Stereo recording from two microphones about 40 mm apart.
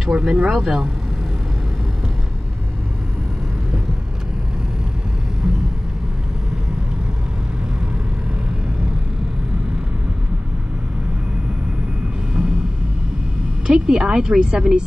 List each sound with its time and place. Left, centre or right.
0.0 s speech: centre
13.7 s a woman's voice: centre